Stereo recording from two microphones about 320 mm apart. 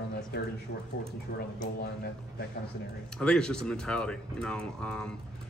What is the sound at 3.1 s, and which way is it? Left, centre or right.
Speech, centre.